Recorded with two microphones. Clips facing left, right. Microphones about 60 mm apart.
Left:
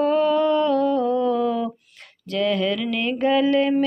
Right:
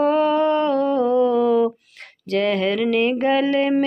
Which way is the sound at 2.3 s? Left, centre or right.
Right.